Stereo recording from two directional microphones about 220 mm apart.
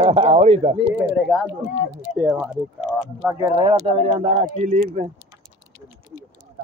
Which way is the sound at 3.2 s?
15° right (ahead or behind).